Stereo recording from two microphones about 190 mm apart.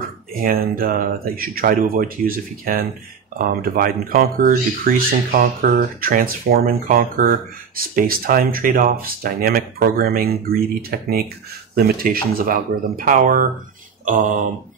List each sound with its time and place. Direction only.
0.3 s speech: 50° right (ahead or behind)